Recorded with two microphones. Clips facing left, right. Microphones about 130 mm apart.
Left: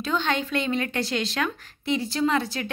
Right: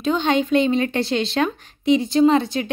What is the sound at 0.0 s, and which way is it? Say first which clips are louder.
A woman's voice: right 7 dB; 20° right (ahead or behind).